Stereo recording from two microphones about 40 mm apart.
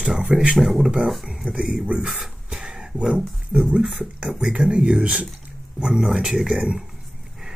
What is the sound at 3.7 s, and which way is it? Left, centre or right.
Speech, right.